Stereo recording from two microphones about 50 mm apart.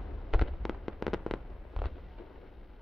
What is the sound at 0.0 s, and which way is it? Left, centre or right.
Fireworks, centre.